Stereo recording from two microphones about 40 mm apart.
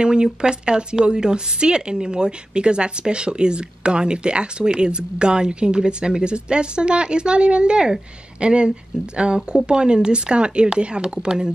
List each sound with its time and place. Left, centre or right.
0.0 s a woman's voice: right